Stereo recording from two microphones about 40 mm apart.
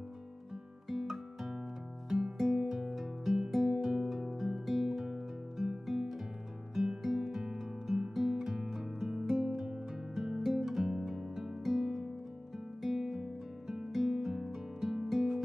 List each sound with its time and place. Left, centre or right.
0.8 s music: centre
2.6 s music: centre
2.9 s music: centre
4.5 s guitar: centre
5.0 s music: centre